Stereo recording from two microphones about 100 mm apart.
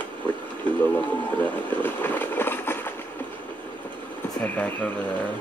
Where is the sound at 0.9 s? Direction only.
20° left (ahead or behind).